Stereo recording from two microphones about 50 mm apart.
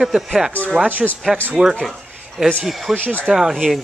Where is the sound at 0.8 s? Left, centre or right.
Right.